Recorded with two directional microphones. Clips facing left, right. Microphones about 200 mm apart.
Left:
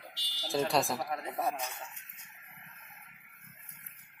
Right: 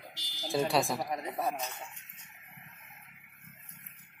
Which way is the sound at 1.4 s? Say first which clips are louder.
Left 1 dB; 10° left (ahead or behind).